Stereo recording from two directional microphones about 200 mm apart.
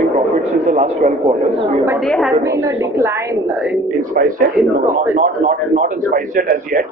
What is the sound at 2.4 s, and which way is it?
A woman's voice, 15° right (ahead or behind).